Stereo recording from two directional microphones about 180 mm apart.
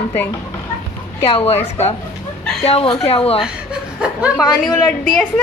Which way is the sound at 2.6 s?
30° left (ahead or behind).